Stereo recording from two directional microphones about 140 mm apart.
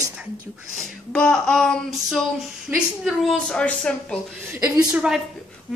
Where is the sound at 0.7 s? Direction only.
5° left (ahead or behind).